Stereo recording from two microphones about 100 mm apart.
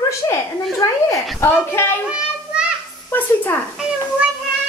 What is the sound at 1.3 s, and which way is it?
Speech, 25° left (ahead or behind).